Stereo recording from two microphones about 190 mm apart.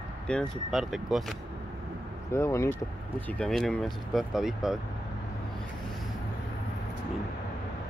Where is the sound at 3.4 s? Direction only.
5° left (ahead or behind).